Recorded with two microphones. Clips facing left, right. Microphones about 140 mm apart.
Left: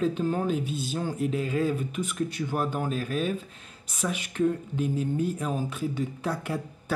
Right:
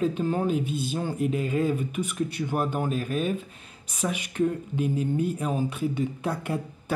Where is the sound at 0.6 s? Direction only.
50° right (ahead or behind).